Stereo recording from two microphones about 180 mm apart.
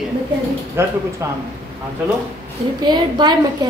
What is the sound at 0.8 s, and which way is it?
Speech, 15° right (ahead or behind).